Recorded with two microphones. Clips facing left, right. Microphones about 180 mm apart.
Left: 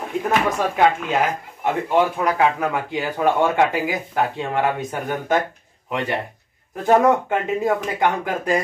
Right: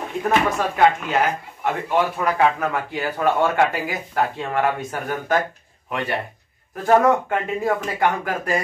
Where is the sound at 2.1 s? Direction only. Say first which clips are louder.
Even; 15° left (ahead or behind).